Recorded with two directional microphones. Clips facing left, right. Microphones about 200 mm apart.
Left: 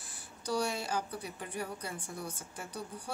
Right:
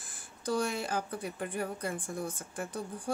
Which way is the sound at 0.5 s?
50° right (ahead or behind).